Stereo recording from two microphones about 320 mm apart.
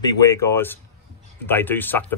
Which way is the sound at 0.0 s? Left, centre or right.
Centre.